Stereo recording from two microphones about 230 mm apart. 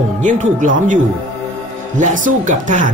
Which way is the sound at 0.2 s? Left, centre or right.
Right.